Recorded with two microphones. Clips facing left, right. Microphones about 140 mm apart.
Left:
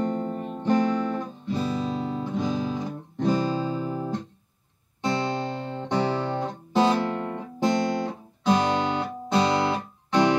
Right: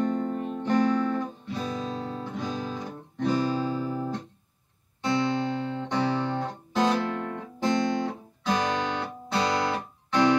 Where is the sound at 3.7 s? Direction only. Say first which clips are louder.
Left 1 dB; 25° left (ahead or behind).